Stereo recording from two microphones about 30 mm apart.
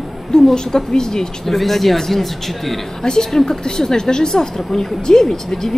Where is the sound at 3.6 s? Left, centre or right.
Left.